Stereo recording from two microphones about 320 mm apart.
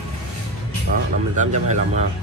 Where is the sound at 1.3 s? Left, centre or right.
Right.